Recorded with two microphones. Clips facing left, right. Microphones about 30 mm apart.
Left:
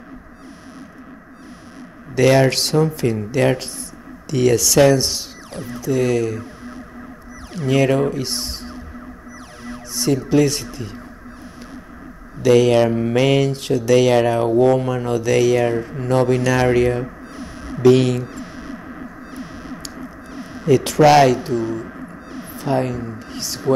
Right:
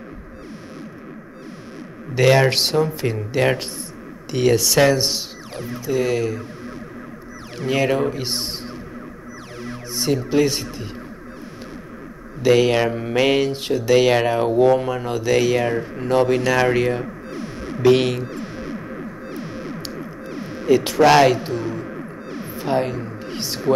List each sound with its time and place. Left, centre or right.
2.1 s speech: centre
5.6 s speech: centre
7.5 s speech: centre
8.2 s speech: centre
9.7 s speech: centre
12.4 s speech: centre
18.2 s music: centre
21.0 s speech: centre
21.4 s music: centre